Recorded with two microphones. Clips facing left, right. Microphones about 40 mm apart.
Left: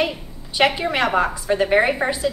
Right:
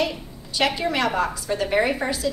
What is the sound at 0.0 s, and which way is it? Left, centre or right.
A woman's voice, centre.